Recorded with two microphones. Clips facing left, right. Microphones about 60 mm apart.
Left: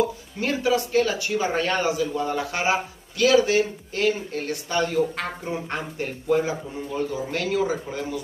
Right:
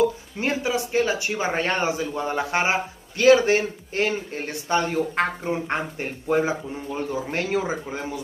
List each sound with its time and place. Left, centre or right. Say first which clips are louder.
0.4 s a man's voice: left 2 dB; right